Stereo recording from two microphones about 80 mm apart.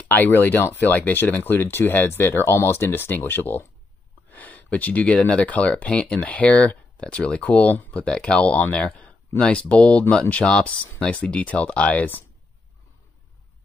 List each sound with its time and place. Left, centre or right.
0.1 s speech: left
8.0 s speech: centre